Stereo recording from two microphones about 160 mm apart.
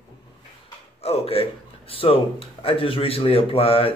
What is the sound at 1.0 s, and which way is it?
Speech, 40° left (ahead or behind).